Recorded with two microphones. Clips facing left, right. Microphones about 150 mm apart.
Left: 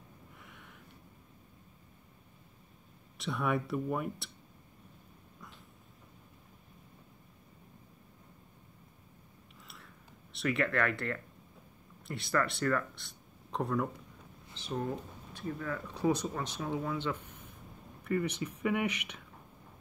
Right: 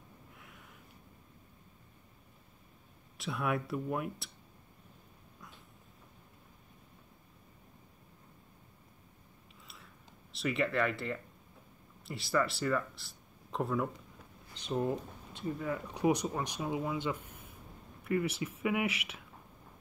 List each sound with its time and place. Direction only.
0.4 s snort: centre (ahead or behind)
3.2 s speech: centre (ahead or behind)
10.3 s speech: centre (ahead or behind)
14.5 s a sound: 15° right (ahead or behind)
15.6 s speech: 15° right (ahead or behind)